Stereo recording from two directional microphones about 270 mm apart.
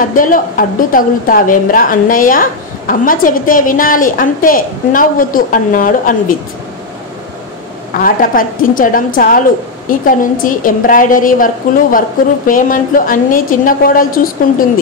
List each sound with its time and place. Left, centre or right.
0.0 s a woman's voice: left
8.0 s a woman's voice: left